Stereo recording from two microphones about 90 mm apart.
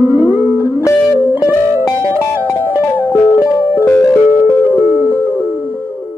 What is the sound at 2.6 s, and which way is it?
Music, 20° right (ahead or behind).